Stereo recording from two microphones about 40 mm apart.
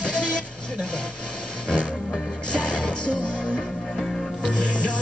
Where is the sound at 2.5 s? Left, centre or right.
Left.